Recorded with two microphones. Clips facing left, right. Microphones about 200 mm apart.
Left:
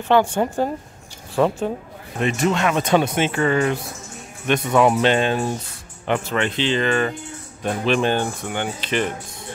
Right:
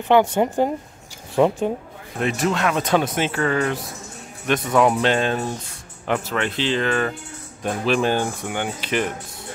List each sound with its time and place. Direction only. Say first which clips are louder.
0.1 s speech: right 1 dB; 15° right (ahead or behind)
2.1 s speech: left 1 dB; centre (ahead or behind)